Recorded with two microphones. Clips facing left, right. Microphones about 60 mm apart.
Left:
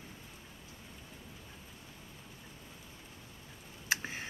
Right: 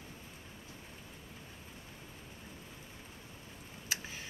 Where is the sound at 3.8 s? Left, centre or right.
Left.